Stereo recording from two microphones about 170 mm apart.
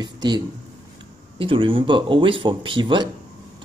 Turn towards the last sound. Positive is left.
turn(degrees=-25)  # may be behind; listen again after turning